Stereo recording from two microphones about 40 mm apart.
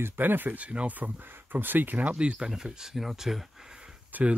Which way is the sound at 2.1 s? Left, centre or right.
Right.